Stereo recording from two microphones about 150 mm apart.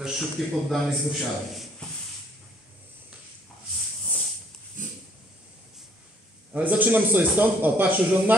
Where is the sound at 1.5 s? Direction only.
Centre (ahead or behind).